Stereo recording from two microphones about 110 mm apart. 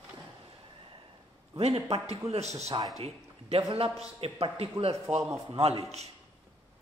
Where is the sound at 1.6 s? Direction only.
65° right (ahead or behind).